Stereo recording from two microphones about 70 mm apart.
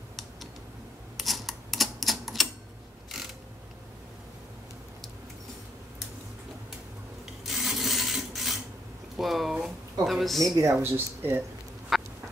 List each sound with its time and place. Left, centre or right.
1.1 s typewriter: centre
7.4 s printer: centre
9.1 s a sound: centre
10.6 s speech: right
10.9 s speech: right
11.9 s a sound: centre